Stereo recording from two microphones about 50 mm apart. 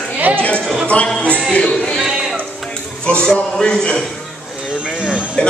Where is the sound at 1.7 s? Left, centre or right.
Centre.